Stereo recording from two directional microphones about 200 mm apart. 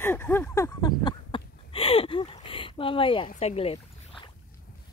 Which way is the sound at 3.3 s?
30° left (ahead or behind).